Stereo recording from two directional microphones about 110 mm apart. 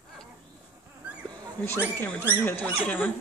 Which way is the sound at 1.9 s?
15° left (ahead or behind).